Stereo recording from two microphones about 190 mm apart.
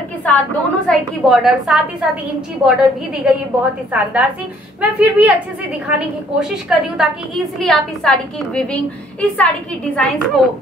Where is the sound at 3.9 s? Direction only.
10° right (ahead or behind).